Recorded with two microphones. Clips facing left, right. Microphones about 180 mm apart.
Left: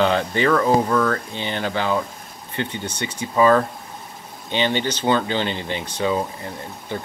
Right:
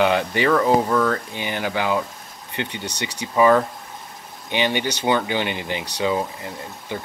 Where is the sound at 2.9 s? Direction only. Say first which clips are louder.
Left 1 dB; 75° right (ahead or behind).